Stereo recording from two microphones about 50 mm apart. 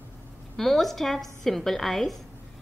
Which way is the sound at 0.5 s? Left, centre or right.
Centre.